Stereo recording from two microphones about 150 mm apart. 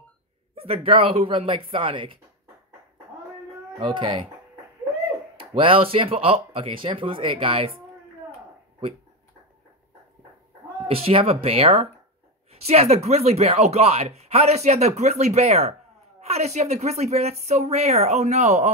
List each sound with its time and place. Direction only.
0.7 s speech: 35° right (ahead or behind)
3.8 s speech: 35° right (ahead or behind)
5.4 s speech: 35° right (ahead or behind)
10.9 s speech: 40° right (ahead or behind)